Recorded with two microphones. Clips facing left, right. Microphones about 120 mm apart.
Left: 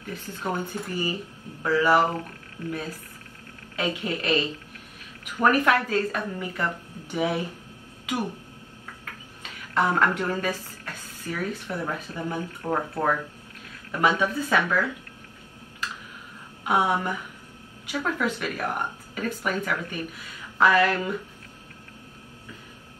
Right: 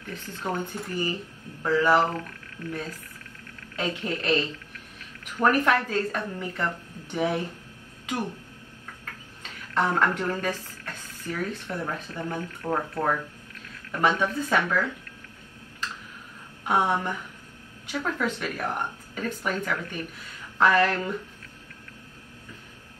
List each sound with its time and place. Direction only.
0.1 s speech: 15° left (ahead or behind)
2.0 s speech: 30° left (ahead or behind)
3.7 s speech: 10° left (ahead or behind)
9.4 s speech: 10° left (ahead or behind)
16.6 s speech: 10° left (ahead or behind)